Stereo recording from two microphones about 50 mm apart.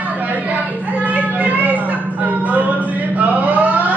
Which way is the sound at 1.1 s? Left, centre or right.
Right.